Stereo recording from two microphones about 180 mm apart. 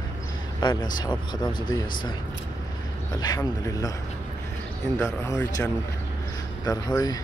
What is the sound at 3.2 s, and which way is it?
Speech, 20° left (ahead or behind).